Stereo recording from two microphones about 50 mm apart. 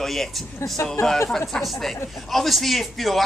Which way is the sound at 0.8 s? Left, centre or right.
Left.